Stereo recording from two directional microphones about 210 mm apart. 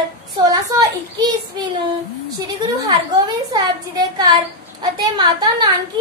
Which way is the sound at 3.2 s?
20° right (ahead or behind).